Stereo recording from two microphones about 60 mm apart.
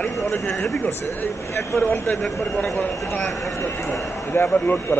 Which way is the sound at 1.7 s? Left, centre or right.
Left.